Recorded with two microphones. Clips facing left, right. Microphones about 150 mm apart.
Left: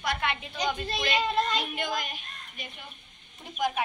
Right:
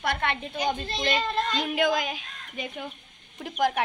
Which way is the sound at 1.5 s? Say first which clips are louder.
Right 6 dB; 90° right.